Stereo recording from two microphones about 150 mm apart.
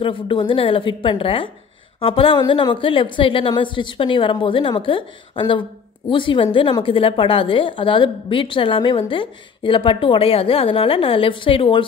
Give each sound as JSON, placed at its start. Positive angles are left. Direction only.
{"t": 0.0, "sound": "a woman's voice", "side_deg": 35}